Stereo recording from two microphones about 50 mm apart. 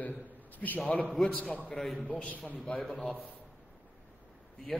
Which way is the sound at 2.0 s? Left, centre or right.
Left.